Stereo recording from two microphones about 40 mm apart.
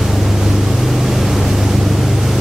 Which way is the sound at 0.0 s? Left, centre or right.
Centre.